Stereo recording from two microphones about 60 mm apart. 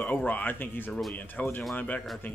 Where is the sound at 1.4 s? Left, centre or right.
Left.